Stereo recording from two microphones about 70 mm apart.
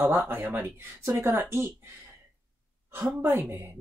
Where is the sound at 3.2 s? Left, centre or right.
Right.